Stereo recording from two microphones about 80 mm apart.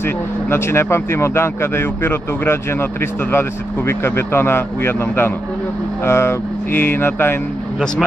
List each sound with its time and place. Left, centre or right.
0.0 s speech: left